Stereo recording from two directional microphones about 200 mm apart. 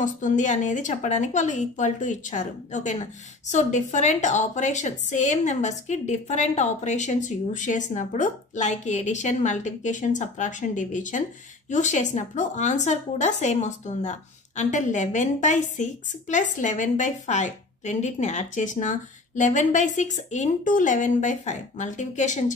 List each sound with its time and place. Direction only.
0.0 s a woman's voice: 40° left (ahead or behind)